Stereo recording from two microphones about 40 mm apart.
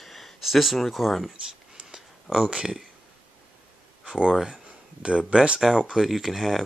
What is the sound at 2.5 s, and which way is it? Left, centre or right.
Speech, right.